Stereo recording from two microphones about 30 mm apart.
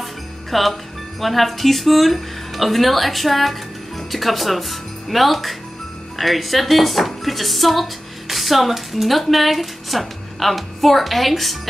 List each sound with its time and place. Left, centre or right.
0.0 s music: centre
1.2 s speech: centre